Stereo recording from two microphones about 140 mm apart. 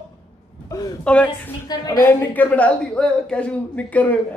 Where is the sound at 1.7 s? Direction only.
30° left (ahead or behind).